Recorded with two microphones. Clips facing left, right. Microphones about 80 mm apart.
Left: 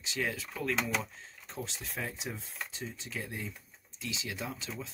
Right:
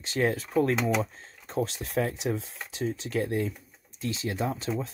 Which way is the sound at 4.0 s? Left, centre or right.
Right.